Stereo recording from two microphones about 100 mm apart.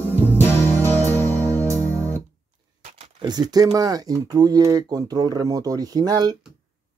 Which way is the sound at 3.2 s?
45° right (ahead or behind).